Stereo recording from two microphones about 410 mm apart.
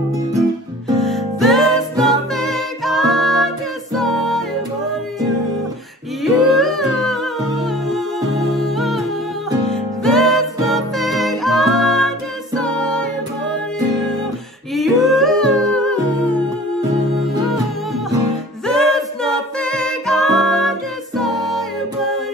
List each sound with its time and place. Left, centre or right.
0.8 s music: centre
6.2 s music: centre
10.0 s music: centre
14.7 s humming: centre
18.7 s music: centre